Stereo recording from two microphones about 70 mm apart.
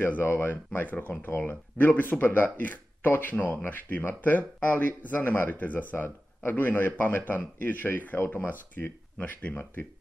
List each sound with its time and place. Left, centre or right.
0.0 s speech: left